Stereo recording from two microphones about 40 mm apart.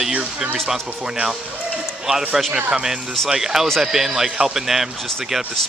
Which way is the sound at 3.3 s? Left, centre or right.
Centre.